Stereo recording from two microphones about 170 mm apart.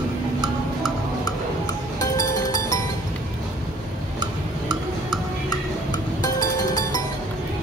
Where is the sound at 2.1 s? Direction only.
20° left (ahead or behind).